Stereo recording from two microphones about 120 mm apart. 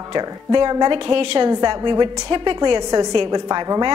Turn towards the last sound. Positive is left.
turn(degrees=-35)  # may be behind; listen again after turning